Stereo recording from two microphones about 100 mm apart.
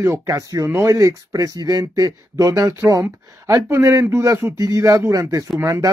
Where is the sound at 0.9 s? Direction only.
35° right (ahead or behind).